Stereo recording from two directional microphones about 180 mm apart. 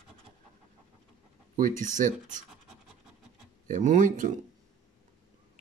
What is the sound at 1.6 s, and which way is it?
Speech, 45° right (ahead or behind).